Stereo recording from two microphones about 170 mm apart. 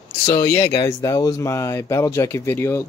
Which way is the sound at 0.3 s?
15° left (ahead or behind).